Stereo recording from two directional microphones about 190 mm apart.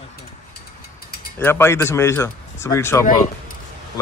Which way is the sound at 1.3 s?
10° left (ahead or behind).